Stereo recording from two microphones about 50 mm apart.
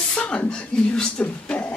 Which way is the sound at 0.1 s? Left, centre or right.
Left.